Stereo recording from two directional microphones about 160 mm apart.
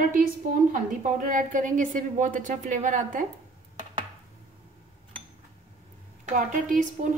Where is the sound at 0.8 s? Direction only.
55° right (ahead or behind).